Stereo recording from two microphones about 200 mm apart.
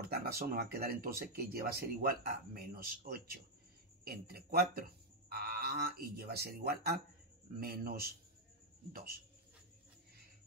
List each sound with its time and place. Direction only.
0.1 s speech: 50° right (ahead or behind)